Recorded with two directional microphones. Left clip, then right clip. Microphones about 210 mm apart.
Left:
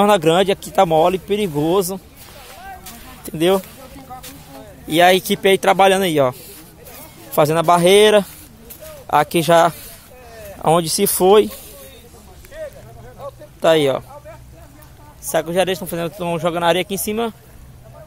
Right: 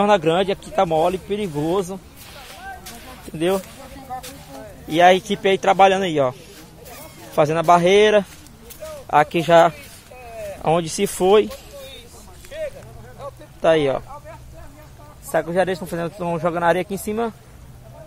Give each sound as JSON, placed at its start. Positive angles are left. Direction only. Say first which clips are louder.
{"t": 0.0, "sound": "speech", "louder": "left 3 dB", "side_deg": 35}
{"t": 2.4, "sound": "a sound", "louder": "even", "side_deg": 15}
{"t": 3.3, "sound": "speech", "louder": "left 5 dB", "side_deg": 35}
{"t": 4.8, "sound": "a man's voice", "louder": "left 1 dB", "side_deg": 25}
{"t": 7.3, "sound": "a man's voice", "louder": "left 1 dB", "side_deg": 25}
{"t": 13.2, "sound": "a sound", "louder": "left 2 dB", "side_deg": -45}
{"t": 13.6, "sound": "a man's voice", "louder": "left 2 dB", "side_deg": 25}
{"t": 15.3, "sound": "a man's voice", "louder": "left 2 dB", "side_deg": 10}